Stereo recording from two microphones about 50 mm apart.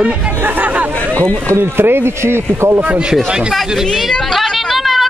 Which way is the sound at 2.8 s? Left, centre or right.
Right.